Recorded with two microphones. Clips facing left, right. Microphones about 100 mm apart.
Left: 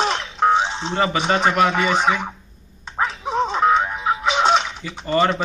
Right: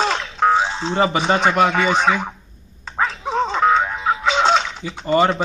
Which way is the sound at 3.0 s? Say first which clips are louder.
Even; centre (ahead or behind).